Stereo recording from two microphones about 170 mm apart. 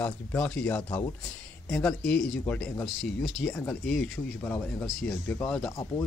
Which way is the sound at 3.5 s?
15° left (ahead or behind).